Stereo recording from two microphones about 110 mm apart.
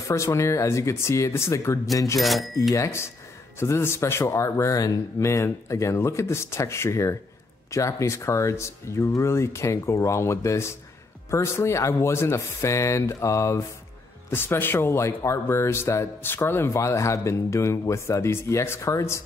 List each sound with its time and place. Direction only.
0.1 s speech: 25° left (ahead or behind)
2.1 s speech: centre (ahead or behind)
2.7 s speech: 25° left (ahead or behind)